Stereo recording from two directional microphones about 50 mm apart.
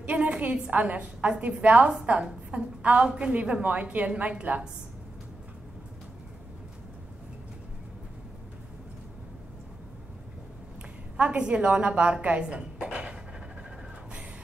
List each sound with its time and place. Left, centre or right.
0.0 s a woman's voice: right
11.1 s speech: right